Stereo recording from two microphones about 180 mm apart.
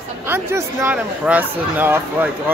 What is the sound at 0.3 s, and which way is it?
Speech, 10° right (ahead or behind).